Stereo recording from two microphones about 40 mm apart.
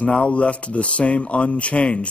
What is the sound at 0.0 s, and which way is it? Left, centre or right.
Speech, left.